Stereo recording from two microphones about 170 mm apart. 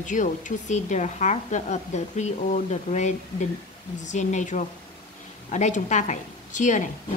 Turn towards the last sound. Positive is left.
turn(degrees=45)  # may be behind; listen again after turning